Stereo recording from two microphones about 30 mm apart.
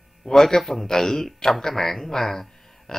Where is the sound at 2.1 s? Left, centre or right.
Centre.